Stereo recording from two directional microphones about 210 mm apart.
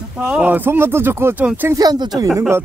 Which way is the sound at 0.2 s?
5° right (ahead or behind).